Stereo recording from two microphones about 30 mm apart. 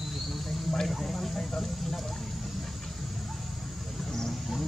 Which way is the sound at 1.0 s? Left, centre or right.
Centre.